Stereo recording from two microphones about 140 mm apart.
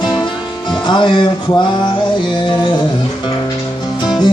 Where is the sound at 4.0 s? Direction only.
30° left (ahead or behind).